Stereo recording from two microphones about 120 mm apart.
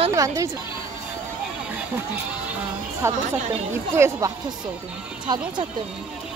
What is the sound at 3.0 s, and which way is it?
Speech, 20° right (ahead or behind).